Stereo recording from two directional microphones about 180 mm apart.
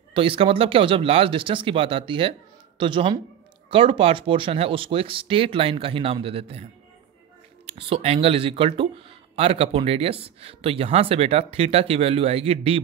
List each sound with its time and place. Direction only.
0.1 s speech: 30° right (ahead or behind)
7.6 s speech: 35° right (ahead or behind)